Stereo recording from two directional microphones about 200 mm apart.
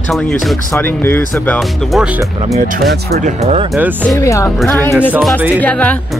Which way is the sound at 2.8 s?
50° right (ahead or behind).